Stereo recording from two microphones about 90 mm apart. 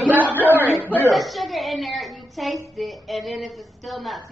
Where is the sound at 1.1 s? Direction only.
Centre (ahead or behind).